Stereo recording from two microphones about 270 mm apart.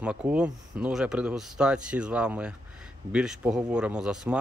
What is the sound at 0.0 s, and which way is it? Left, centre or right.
Speech, centre.